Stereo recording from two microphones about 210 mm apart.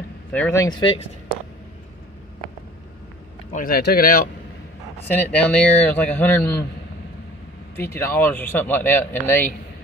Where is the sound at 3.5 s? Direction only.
45° left (ahead or behind).